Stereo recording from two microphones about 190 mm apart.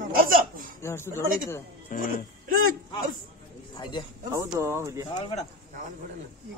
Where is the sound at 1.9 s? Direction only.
40° left (ahead or behind).